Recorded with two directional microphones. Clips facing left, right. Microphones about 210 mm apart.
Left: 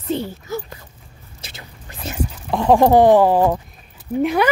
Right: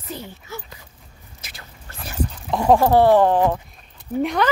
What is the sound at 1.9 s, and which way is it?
Dog, 20° left (ahead or behind).